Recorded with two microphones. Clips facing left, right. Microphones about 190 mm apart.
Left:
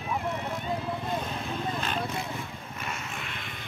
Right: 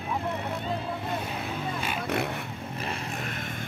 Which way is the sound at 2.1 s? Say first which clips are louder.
Right 5 dB; 65° right (ahead or behind).